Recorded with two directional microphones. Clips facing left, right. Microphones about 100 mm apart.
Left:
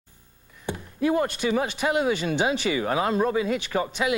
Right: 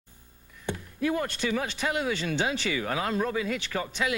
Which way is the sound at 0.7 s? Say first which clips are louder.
Left 6 dB; 25° left (ahead or behind).